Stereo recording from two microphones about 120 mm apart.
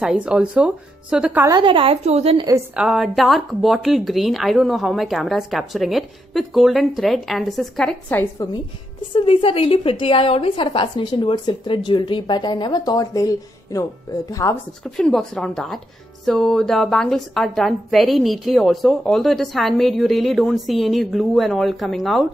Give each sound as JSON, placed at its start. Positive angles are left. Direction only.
{"t": 0.0, "sound": "speech", "side_deg": -5}
{"t": 1.5, "sound": "a woman's voice", "side_deg": -40}
{"t": 2.7, "sound": "a woman's voice", "side_deg": -5}
{"t": 8.1, "sound": "a woman's voice", "side_deg": 20}
{"t": 9.1, "sound": "a woman's voice", "side_deg": 50}
{"t": 15.0, "sound": "a woman's voice", "side_deg": 5}